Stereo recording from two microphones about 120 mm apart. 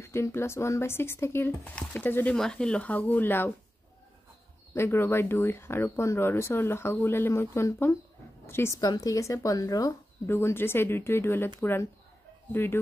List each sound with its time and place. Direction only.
0.0 s speech: 25° left (ahead or behind)
2.3 s speech: 5° left (ahead or behind)
4.7 s speech: 20° left (ahead or behind)
8.8 s speech: 30° left (ahead or behind)
10.2 s speech: 20° left (ahead or behind)